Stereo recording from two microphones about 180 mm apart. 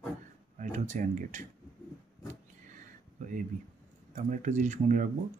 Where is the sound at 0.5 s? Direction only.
45° right (ahead or behind).